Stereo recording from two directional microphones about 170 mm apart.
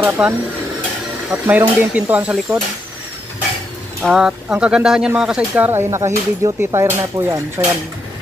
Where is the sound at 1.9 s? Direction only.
10° right (ahead or behind).